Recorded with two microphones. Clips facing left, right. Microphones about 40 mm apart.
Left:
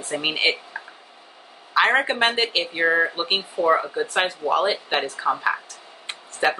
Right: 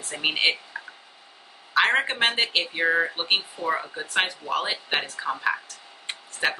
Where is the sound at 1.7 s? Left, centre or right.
Centre.